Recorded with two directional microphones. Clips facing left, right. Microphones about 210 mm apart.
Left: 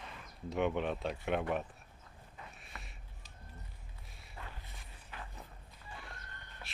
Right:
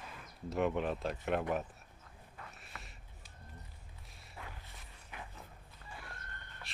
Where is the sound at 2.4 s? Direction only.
Centre (ahead or behind).